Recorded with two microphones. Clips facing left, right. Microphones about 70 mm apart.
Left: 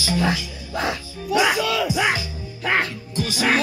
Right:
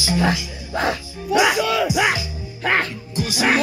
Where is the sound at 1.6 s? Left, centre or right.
Right.